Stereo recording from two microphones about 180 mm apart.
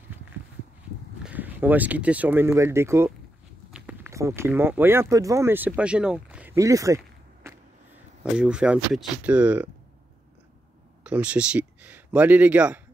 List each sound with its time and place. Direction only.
1.2 s speech: 10° right (ahead or behind)
3.7 s walk: 10° right (ahead or behind)
4.4 s speech: 10° right (ahead or behind)
7.4 s vehicle: 15° right (ahead or behind)
8.2 s speech: 5° right (ahead or behind)
11.1 s speech: 5° right (ahead or behind)